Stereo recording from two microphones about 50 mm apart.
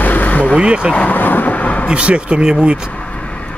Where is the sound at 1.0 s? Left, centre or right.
Left.